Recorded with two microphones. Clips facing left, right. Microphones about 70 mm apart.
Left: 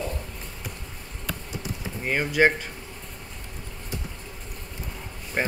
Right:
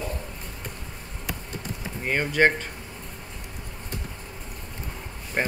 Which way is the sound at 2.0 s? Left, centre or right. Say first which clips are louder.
Even; centre.